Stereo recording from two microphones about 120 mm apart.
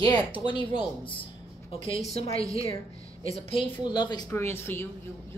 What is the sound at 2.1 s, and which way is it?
Speech, 55° left (ahead or behind).